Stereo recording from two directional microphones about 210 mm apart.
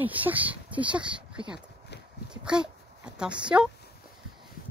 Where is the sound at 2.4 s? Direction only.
5° right (ahead or behind).